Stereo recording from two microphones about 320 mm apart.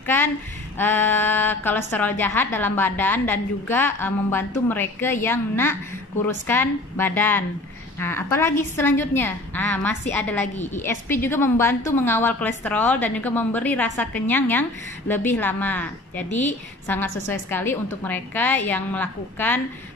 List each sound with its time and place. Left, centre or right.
0.0 s a sound: centre
0.7 s a woman's voice: centre
10.4 s a woman's voice: left
10.8 s a woman's voice: centre